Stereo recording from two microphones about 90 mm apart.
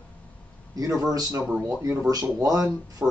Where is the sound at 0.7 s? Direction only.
40° right (ahead or behind).